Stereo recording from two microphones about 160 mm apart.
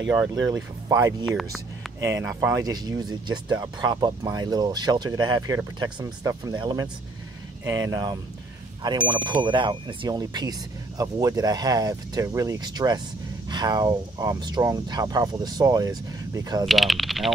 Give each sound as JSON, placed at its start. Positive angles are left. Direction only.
{"t": 0.1, "sound": "speech", "side_deg": -20}
{"t": 1.2, "sound": "speech", "side_deg": 0}
{"t": 2.0, "sound": "speech", "side_deg": -20}
{"t": 16.6, "sound": "speech", "side_deg": 0}